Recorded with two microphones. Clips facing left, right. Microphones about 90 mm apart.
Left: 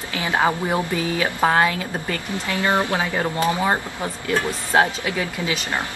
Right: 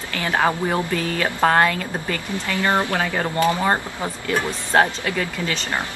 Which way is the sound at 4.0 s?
15° right (ahead or behind).